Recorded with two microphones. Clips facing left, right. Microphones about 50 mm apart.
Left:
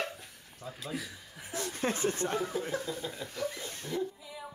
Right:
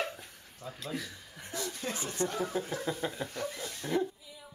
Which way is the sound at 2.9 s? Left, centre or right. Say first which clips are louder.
Right 3 dB; right.